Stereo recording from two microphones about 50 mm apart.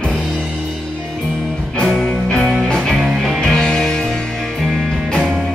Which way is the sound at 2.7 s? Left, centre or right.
Centre.